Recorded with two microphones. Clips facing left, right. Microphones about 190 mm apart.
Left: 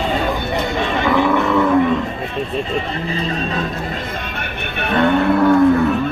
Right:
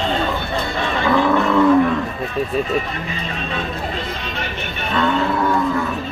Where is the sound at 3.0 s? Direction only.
35° left (ahead or behind).